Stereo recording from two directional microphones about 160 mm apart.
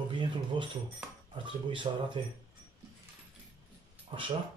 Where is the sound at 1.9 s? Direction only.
35° right (ahead or behind).